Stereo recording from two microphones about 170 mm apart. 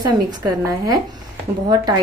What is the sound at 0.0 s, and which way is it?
Speech, 20° right (ahead or behind).